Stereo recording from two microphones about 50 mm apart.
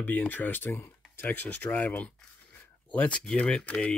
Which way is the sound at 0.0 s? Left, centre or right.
Left.